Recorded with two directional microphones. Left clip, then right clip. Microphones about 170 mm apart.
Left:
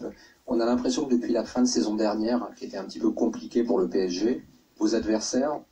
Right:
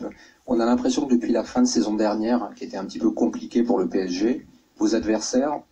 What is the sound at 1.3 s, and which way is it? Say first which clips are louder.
Speech: right 3 dB; 30° right (ahead or behind).